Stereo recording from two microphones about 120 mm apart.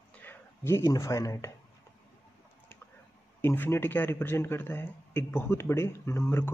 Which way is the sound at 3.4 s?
20° left (ahead or behind).